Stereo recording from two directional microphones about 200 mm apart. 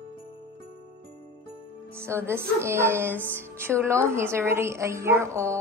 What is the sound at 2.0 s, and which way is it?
Speech, 10° right (ahead or behind).